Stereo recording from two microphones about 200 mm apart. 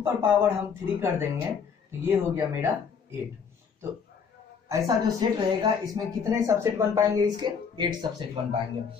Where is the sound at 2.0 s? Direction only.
10° right (ahead or behind).